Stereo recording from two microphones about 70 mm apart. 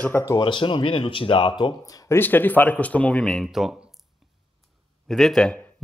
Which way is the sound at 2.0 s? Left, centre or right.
Left.